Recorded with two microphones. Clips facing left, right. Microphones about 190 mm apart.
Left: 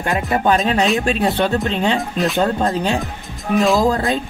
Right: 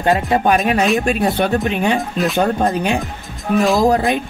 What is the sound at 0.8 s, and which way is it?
Speech, 5° right (ahead or behind).